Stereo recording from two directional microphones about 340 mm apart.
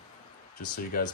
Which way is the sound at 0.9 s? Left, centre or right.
Left.